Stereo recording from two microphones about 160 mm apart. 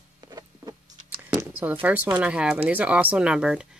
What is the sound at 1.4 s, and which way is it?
Speech, 10° right (ahead or behind).